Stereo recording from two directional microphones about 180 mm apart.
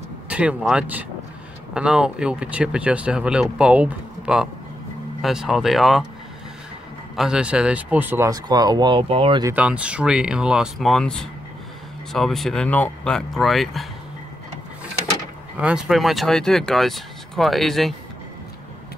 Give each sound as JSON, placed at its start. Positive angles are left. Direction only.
{"t": 0.3, "sound": "speech", "side_deg": -5}
{"t": 7.2, "sound": "speech", "side_deg": -5}
{"t": 9.5, "sound": "speech", "side_deg": -5}
{"t": 15.5, "sound": "speech", "side_deg": -5}